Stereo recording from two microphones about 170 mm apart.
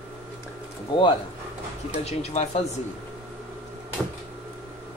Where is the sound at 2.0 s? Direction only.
40° left (ahead or behind).